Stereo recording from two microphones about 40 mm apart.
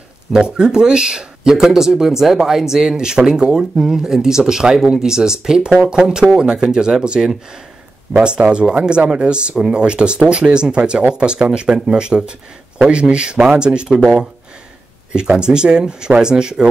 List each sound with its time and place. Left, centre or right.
0.3 s speech: centre